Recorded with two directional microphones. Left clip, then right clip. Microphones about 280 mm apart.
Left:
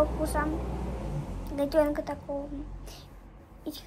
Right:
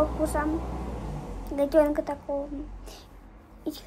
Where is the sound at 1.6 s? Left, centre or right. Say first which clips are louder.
Right 4 dB; centre.